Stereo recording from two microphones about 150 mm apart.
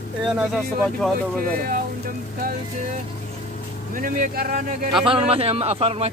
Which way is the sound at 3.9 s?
70° right (ahead or behind).